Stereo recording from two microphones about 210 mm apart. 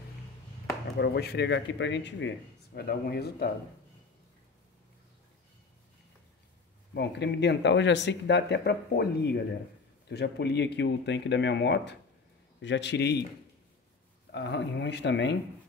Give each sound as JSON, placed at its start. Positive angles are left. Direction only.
{"t": 0.9, "sound": "speech", "side_deg": 50}
{"t": 6.9, "sound": "speech", "side_deg": 55}
{"t": 14.3, "sound": "speech", "side_deg": 55}